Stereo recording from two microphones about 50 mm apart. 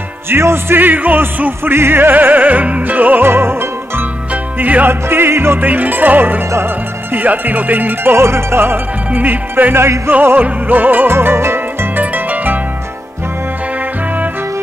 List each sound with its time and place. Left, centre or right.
0.3 s music: right
0.7 s music: right
3.3 s music: right
4.3 s music: right
5.6 s music: right
9.8 s music: right
10.4 s music: right
12.0 s harp: right